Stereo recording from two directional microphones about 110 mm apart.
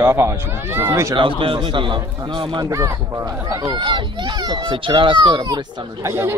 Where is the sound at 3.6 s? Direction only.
45° right (ahead or behind).